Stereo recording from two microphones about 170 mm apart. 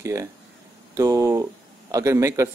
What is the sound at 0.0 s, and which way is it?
A man's voice, 15° right (ahead or behind).